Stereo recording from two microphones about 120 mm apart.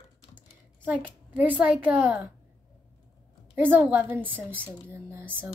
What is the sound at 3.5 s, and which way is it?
A woman's voice, 15° right (ahead or behind).